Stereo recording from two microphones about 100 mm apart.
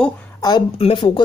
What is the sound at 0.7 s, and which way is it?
Speech, 70° left (ahead or behind).